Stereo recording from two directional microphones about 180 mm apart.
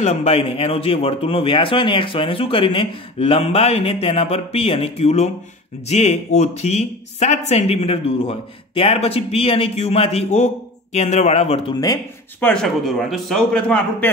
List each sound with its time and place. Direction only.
0.0 s speech: 35° left (ahead or behind)
12.4 s a man's voice: 5° left (ahead or behind)